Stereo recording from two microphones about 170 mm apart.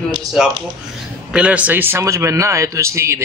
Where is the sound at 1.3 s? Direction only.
5° right (ahead or behind).